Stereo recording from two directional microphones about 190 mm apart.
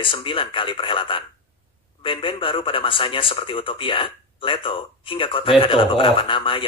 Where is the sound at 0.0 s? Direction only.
25° left (ahead or behind).